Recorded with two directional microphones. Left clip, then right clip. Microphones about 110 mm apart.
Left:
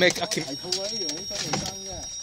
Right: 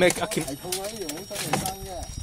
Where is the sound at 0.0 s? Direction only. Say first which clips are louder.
Even; 10° right (ahead or behind).